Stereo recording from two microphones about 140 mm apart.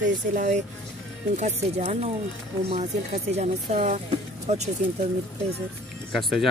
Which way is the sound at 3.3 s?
50° right (ahead or behind).